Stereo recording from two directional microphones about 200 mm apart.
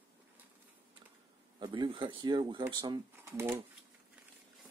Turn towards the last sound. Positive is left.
turn(degrees=-10)  # may be behind; listen again after turning